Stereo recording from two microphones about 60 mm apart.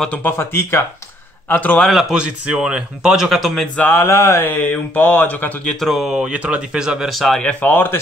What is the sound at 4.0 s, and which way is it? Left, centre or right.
Speech, left.